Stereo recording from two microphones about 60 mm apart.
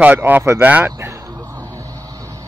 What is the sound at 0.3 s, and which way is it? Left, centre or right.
Speech, right.